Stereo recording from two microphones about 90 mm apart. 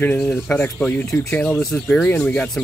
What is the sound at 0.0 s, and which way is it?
Speech, 20° left (ahead or behind).